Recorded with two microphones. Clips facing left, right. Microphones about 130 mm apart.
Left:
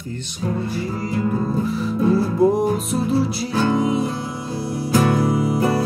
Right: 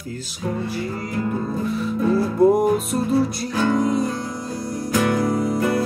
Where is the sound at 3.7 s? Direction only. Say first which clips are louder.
Even; 5° left (ahead or behind).